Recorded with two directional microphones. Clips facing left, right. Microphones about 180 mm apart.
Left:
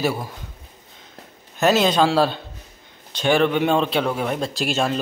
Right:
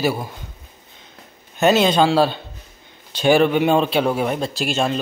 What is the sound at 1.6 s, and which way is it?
Speech, centre (ahead or behind).